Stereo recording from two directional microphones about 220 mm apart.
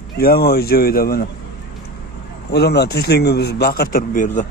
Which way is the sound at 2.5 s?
50° left (ahead or behind).